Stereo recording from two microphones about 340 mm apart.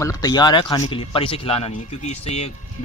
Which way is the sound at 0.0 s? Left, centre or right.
Centre.